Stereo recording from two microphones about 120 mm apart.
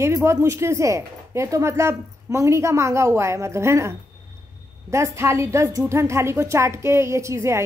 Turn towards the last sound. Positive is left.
turn(degrees=-25)  # may be behind; listen again after turning